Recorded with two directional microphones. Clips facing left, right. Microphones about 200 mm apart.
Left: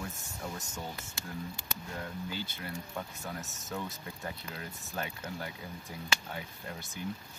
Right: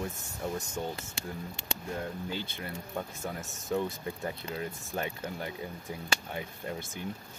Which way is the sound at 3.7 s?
25° right (ahead or behind).